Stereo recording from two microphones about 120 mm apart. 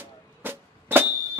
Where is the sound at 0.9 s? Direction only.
20° right (ahead or behind).